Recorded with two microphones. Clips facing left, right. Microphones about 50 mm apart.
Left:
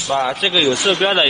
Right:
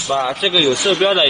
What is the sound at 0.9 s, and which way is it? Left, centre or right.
Speech, left.